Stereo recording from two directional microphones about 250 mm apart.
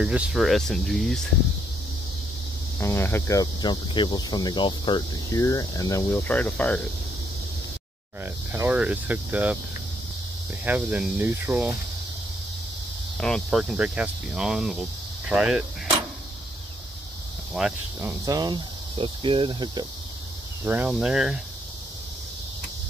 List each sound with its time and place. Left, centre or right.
0.0 s speech: centre
2.8 s speech: centre
8.5 s speech: centre
10.6 s speech: centre
13.2 s speech: centre
17.6 s speech: centre
18.2 s speech: centre
20.6 s speech: centre